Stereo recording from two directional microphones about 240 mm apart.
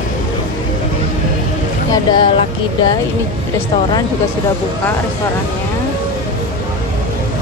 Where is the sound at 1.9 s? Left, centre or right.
Centre.